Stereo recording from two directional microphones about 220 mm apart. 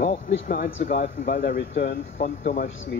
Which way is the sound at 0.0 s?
40° left (ahead or behind).